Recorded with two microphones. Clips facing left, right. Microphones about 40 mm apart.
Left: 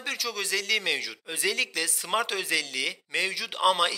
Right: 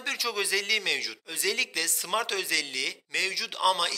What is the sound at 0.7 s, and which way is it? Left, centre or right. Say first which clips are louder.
Speech: left 1 dB; centre.